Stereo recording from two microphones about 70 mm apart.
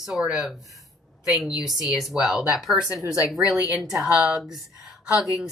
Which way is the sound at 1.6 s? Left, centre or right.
Centre.